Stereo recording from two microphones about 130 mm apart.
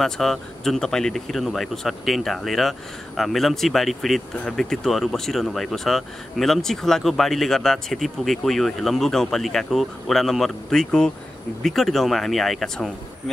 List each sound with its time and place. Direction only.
0.0 s speech: centre (ahead or behind)